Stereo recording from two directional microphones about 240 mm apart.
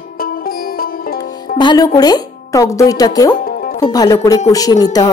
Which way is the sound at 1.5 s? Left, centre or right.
Centre.